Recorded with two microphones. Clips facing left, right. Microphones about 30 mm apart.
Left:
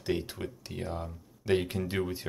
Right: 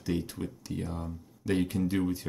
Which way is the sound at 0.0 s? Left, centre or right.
Left.